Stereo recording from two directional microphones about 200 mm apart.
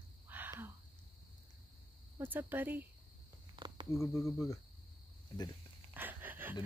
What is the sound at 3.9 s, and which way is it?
Speech, 15° left (ahead or behind).